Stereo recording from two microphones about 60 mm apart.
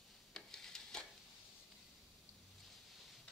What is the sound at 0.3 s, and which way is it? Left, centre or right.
Rub, centre.